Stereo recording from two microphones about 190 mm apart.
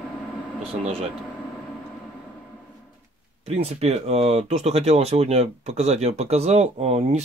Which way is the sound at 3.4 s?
35° right (ahead or behind).